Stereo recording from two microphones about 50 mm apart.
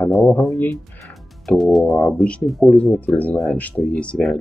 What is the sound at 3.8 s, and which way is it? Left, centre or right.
Speech, left.